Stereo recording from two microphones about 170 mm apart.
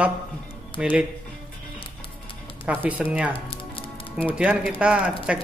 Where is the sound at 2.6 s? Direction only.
10° right (ahead or behind).